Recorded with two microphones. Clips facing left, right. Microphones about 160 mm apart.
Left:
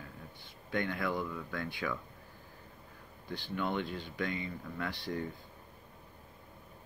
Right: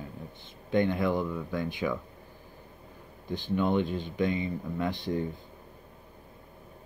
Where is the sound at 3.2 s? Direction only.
20° right (ahead or behind).